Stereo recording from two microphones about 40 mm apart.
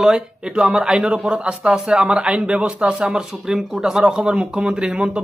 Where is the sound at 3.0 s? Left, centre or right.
Centre.